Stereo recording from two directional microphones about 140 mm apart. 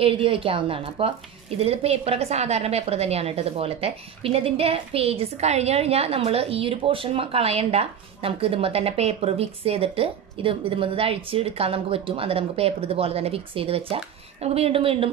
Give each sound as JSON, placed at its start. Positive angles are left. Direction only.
{"t": 0.0, "sound": "a woman's voice", "side_deg": -40}